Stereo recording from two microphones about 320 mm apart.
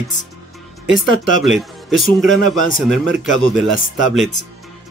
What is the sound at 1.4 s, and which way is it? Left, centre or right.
Speech, centre.